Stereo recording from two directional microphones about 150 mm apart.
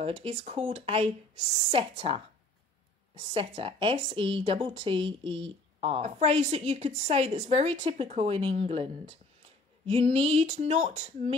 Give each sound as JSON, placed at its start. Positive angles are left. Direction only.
{"t": 0.0, "sound": "a woman's voice", "side_deg": -40}
{"t": 3.3, "sound": "a woman's voice", "side_deg": -35}
{"t": 10.0, "sound": "female singing", "side_deg": -45}